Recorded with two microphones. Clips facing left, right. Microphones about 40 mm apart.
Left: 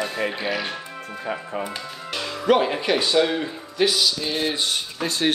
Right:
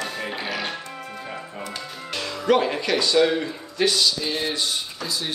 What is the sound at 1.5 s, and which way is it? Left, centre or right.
Speech, centre.